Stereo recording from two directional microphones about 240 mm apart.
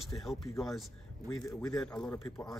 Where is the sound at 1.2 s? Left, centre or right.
Centre.